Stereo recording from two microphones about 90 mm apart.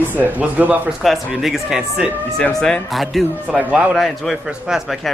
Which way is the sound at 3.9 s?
Centre (ahead or behind).